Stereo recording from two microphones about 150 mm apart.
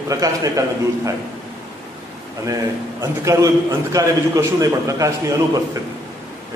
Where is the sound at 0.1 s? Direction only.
25° right (ahead or behind).